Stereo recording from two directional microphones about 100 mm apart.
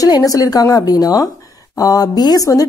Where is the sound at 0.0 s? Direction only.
35° left (ahead or behind).